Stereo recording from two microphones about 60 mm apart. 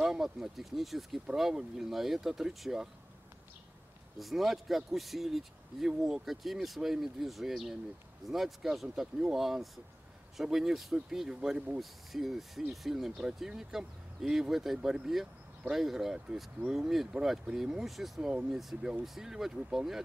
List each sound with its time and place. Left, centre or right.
0.0 s speech: centre
4.2 s speech: centre
11.8 s speech: centre
14.5 s speech: centre